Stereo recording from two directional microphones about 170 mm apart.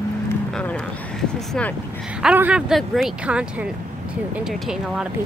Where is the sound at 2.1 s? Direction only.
5° right (ahead or behind).